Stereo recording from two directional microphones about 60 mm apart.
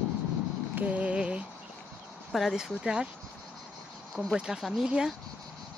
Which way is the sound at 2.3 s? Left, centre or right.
Centre.